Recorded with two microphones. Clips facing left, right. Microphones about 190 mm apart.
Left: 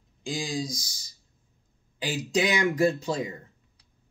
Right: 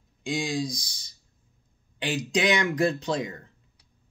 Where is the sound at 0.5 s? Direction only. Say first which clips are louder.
Right 2 dB; 60° right (ahead or behind).